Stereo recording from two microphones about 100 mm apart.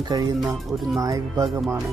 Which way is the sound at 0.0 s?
40° right (ahead or behind).